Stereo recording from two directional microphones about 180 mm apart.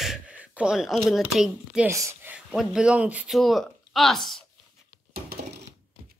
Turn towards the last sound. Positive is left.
turn(degrees=-55)  # may be behind; listen again after turning